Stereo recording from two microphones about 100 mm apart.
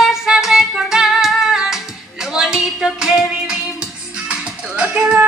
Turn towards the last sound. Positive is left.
turn(degrees=-10)  # may be behind; listen again after turning